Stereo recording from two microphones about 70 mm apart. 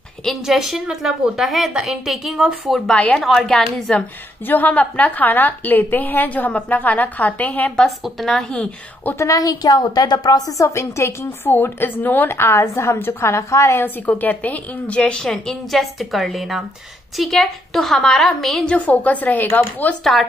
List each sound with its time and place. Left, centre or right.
0.2 s a woman's voice: centre
2.9 s a woman's voice: centre
4.5 s a woman's voice: left
8.0 s a woman's voice: centre
9.2 s a woman's voice: left
10.7 s speech: left
13.8 s a woman's voice: left; by 18.8 s centre
18.8 s a woman's voice: left
20.0 s a woman's voice: centre